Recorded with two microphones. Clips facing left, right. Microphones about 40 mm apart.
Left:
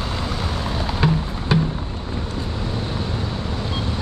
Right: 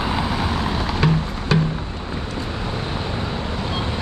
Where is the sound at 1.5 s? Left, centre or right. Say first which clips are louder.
Even; centre.